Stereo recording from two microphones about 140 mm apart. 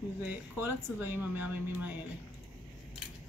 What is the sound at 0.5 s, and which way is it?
Speech, 15° right (ahead or behind).